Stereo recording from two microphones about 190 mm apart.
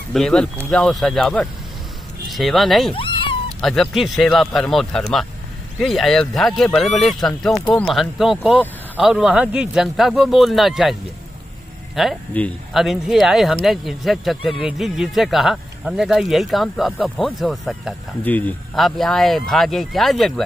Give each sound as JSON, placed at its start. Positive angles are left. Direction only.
{"t": 0.1, "sound": "speech", "side_deg": 5}
{"t": 2.9, "sound": "cat", "side_deg": 30}
{"t": 3.6, "sound": "speech", "side_deg": 0}